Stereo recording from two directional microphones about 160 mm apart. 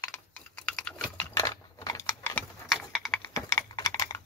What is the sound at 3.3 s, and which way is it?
Typing, 20° left (ahead or behind).